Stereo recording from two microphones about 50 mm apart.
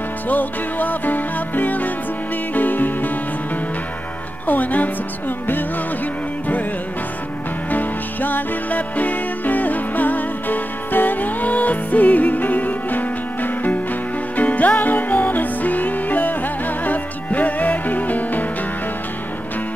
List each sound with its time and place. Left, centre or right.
0.3 s music: left
4.5 s speech: left
7.7 s music: left